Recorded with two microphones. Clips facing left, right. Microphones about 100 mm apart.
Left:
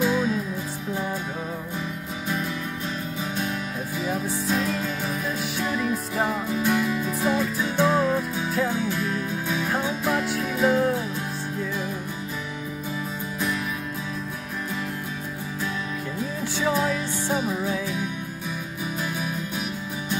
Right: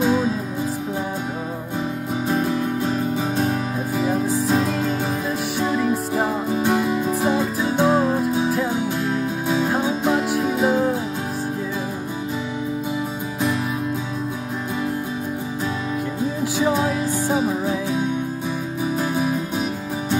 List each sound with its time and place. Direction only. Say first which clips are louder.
0.0 s music: right 4 dB; 30° right (ahead or behind)
2.2 s music: right 7 dB; 35° right (ahead or behind)
4.0 s music: right 7 dB; 30° right (ahead or behind)
16.6 s music: right 3 dB; 25° right (ahead or behind)
18.9 s music: right 8 dB; 30° right (ahead or behind)